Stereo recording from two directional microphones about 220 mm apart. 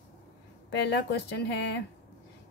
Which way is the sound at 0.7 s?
50° left (ahead or behind).